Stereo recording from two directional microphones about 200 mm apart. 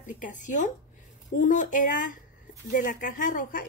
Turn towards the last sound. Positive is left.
turn(degrees=40)  # may be behind; listen again after turning